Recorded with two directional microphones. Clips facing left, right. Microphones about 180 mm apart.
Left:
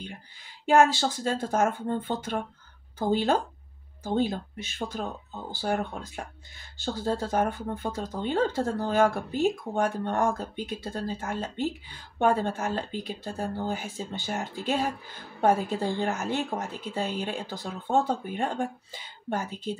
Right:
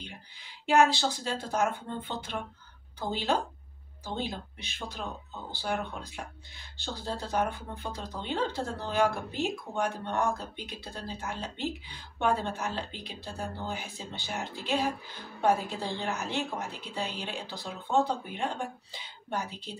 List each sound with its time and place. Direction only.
0.7 s speech: 45° left (ahead or behind)